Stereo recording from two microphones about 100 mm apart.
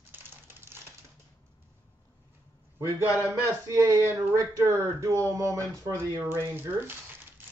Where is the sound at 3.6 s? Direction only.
30° right (ahead or behind).